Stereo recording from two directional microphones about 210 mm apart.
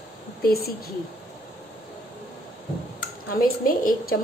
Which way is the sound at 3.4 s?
40° left (ahead or behind).